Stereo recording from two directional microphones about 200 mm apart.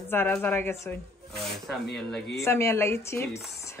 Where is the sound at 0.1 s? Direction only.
10° left (ahead or behind).